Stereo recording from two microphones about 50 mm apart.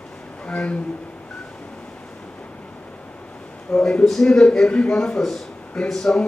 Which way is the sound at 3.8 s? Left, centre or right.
Left.